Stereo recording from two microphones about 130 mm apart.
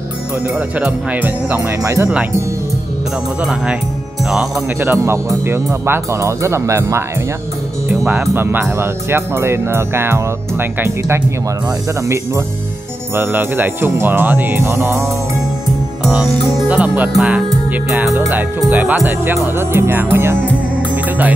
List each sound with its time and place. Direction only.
0.5 s speech: 10° right (ahead or behind)
3.3 s speech: 10° right (ahead or behind)
4.2 s music: 5° right (ahead or behind)
4.7 s speech: 20° right (ahead or behind)
13.1 s speech: 15° right (ahead or behind)
16.0 s speech: 5° right (ahead or behind)
17.1 s music: 5° right (ahead or behind)
18.7 s speech: 10° right (ahead or behind)